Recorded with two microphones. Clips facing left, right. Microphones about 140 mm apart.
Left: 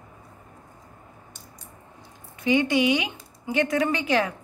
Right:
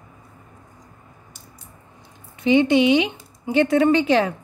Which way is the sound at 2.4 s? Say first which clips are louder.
Right 5 dB; 25° right (ahead or behind).